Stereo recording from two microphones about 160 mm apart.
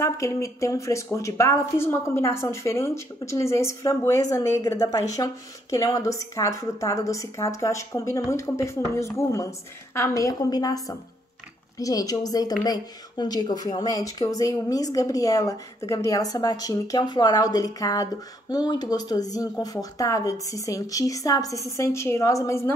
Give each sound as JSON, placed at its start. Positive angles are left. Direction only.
{"t": 0.0, "sound": "a woman's voice", "side_deg": 20}